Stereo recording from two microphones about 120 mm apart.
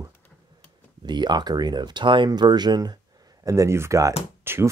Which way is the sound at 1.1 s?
40° right (ahead or behind).